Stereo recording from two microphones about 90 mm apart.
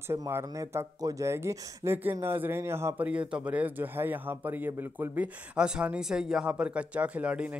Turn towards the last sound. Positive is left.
turn(degrees=-15)  # may be behind; listen again after turning